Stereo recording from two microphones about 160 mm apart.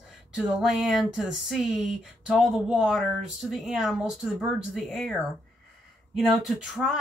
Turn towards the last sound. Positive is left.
turn(degrees=0)  # may be behind; listen again after turning